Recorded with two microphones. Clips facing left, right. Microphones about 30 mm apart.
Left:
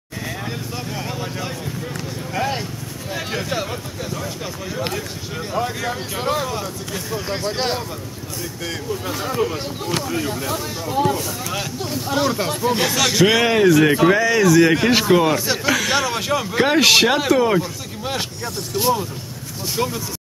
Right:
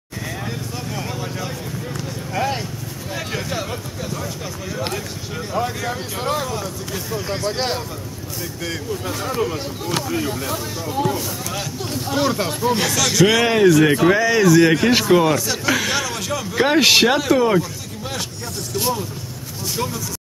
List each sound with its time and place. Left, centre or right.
0.2 s vehicle: centre
3.1 s a sound: centre
4.7 s speech: centre
12.9 s speech: centre
15.3 s speech: left
15.6 s speech: centre
15.9 s speech: centre
16.2 s speech: left
16.5 s speech: centre
18.0 s speech: centre